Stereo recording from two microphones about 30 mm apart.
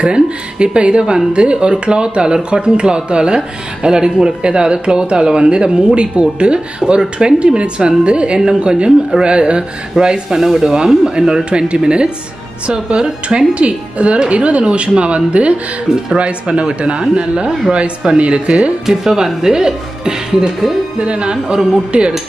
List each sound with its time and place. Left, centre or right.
0.0 s speech: right
10.4 s speech: centre
11.1 s speech: right
15.9 s speech: right
16.4 s speech: right
18.9 s speech: centre
21.0 s speech: right
21.9 s speech: right